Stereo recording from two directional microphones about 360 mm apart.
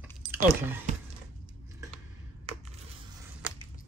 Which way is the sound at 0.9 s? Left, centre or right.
Centre.